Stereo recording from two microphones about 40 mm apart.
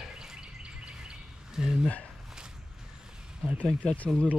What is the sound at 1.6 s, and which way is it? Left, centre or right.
Speech, centre.